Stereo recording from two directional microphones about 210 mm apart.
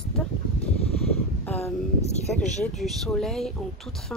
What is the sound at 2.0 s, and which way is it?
Speech, 30° left (ahead or behind).